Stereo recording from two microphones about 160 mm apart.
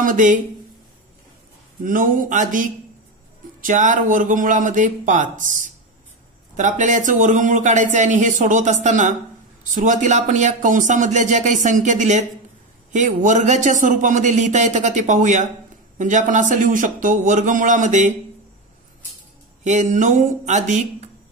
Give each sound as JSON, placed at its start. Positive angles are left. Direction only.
{"t": 0.0, "sound": "speech", "side_deg": -55}
{"t": 1.9, "sound": "a man's voice", "side_deg": -60}
{"t": 19.6, "sound": "a man's voice", "side_deg": -50}